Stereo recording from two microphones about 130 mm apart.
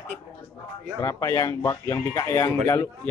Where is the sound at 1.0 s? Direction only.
25° left (ahead or behind).